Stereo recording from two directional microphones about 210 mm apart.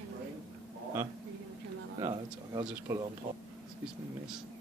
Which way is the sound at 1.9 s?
15° right (ahead or behind).